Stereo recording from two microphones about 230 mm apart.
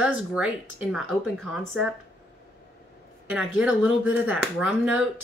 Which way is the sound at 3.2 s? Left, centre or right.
Centre.